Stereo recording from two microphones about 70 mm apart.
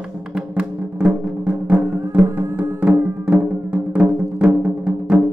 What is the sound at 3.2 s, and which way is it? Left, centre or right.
Music, centre.